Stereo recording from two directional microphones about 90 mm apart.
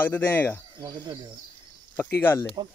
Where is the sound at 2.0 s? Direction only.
25° left (ahead or behind).